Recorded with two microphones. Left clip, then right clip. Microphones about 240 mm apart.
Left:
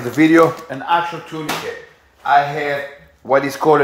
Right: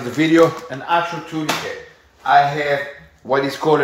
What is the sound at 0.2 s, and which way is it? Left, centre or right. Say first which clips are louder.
Speech: left 2 dB; left.